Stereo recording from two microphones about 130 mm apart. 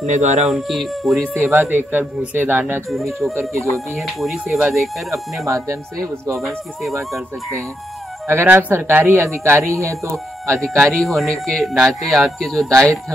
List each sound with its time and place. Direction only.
0.0 s speech: 65° right (ahead or behind)
0.5 s speech: centre (ahead or behind)
1.4 s speech: 15° right (ahead or behind)
2.9 s speech: centre (ahead or behind)
5.5 s speech: 25° right (ahead or behind)
6.4 s speech: centre (ahead or behind)
8.3 s speech: 15° right (ahead or behind)
10.6 s speech: 5° left (ahead or behind)